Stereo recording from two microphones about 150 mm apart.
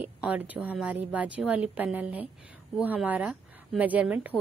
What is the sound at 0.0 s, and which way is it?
A woman's voice, 10° right (ahead or behind).